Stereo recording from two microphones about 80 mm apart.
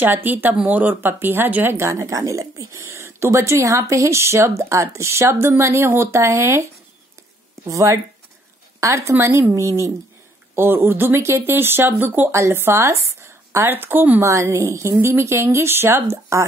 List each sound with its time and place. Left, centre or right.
0.0 s speech: right
7.6 s a woman's voice: right
12.3 s speech: right
14.2 s speech: right